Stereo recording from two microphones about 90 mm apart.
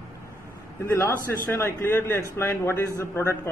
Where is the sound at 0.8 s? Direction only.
25° left (ahead or behind).